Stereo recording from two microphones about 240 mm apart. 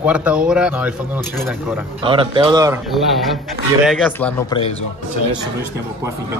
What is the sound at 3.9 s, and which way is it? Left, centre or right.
Speech, centre.